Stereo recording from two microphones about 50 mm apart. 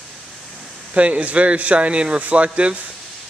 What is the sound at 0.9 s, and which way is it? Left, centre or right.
Speech, right.